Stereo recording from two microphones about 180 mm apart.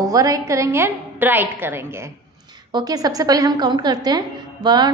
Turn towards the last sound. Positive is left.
turn(degrees=-25)  # may be behind; listen again after turning